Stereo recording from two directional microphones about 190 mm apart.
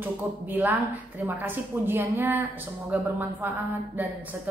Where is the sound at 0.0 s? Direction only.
10° right (ahead or behind).